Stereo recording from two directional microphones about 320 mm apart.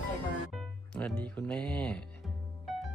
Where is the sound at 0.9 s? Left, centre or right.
Centre.